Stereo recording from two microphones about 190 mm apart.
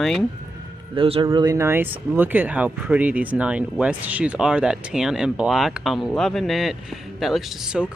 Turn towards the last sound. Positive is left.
turn(degrees=0)  # may be behind; listen again after turning